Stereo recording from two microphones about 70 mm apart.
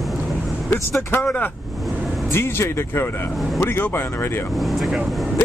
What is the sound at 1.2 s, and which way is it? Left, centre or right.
Speech, centre.